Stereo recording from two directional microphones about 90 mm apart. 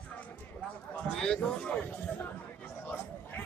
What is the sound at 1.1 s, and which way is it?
Speech, 10° left (ahead or behind).